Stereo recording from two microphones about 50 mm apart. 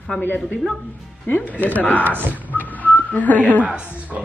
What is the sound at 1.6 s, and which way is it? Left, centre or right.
Speech, left.